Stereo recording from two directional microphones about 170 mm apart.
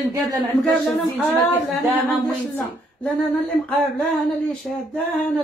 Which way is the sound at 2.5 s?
5° left (ahead or behind).